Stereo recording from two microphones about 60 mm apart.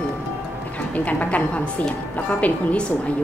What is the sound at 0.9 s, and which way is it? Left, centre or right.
Speech, left.